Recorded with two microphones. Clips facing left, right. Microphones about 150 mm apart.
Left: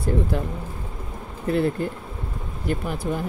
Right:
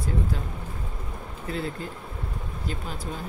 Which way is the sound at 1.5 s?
60° left (ahead or behind).